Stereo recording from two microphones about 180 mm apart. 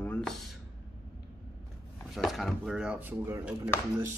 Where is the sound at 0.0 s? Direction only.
5° left (ahead or behind).